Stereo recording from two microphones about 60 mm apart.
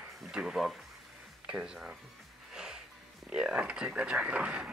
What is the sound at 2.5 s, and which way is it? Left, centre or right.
Music, centre.